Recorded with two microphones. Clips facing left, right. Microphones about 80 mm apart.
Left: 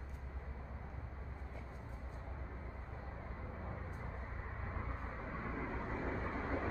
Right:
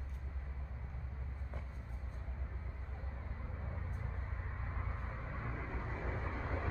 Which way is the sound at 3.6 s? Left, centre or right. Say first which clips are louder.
Even; centre.